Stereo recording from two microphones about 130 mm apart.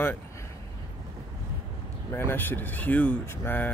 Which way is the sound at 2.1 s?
15° left (ahead or behind).